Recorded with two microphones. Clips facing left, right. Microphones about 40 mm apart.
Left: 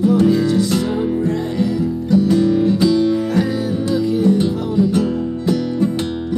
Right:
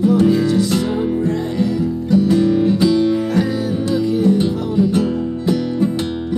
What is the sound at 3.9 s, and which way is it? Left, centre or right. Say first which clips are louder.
Music: even; centre.